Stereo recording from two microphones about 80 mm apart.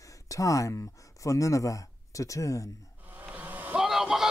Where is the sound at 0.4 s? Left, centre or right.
Left.